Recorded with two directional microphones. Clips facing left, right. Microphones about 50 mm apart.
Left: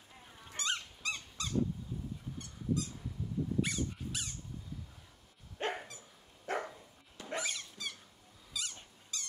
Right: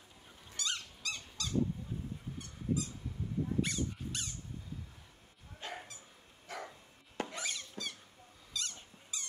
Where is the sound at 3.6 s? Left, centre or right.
Centre.